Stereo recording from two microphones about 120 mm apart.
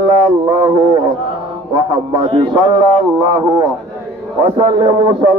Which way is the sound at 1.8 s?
40° right (ahead or behind).